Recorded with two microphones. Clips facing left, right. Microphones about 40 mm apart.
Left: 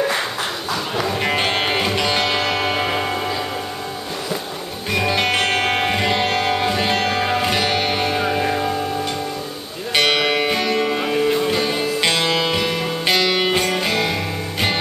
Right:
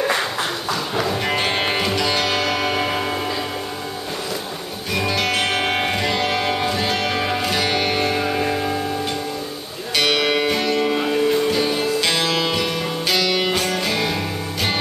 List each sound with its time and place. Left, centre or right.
0.0 s music: centre
4.9 s music: centre
9.9 s music: centre